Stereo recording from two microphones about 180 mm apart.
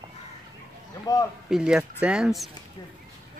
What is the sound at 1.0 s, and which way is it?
Speech, 20° left (ahead or behind).